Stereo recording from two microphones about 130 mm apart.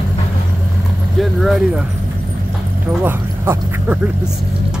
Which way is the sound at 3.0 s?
15° right (ahead or behind).